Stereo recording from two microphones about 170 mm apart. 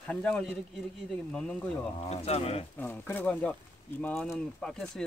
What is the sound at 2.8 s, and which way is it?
Speech, 10° left (ahead or behind).